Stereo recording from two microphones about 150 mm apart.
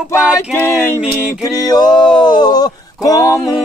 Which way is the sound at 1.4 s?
25° left (ahead or behind).